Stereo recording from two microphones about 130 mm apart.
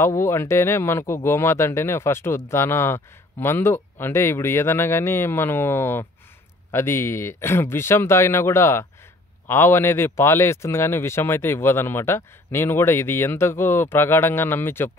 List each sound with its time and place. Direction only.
0.0 s speech: 20° left (ahead or behind)